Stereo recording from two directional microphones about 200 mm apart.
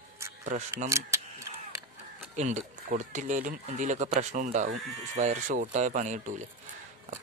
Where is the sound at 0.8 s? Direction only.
15° right (ahead or behind).